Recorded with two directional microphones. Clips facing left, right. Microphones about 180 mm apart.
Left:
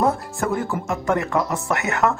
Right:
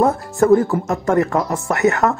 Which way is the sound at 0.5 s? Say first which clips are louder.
Right 8 dB; 40° right (ahead or behind).